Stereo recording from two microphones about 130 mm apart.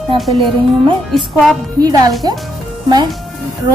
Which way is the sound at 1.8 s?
30° right (ahead or behind).